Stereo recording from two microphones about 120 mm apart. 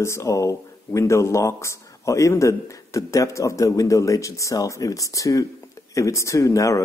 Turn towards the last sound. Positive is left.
turn(degrees=25)  # may be behind; listen again after turning